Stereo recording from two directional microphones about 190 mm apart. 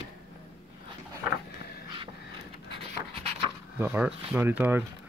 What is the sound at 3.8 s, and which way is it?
Speech, 10° right (ahead or behind).